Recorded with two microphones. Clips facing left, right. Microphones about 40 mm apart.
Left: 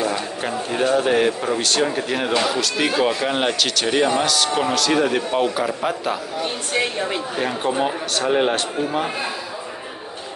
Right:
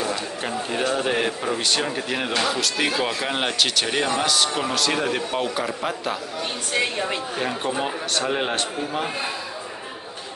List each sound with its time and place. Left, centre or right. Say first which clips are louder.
0.4 s speech: left 4 dB; centre